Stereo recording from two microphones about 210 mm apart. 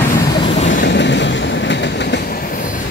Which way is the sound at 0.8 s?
55° left (ahead or behind).